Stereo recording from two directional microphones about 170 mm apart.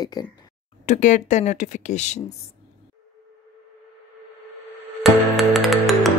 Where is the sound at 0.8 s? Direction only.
45° left (ahead or behind).